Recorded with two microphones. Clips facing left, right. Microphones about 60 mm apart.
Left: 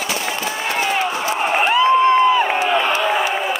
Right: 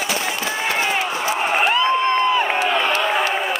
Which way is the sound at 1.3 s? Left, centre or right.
Centre.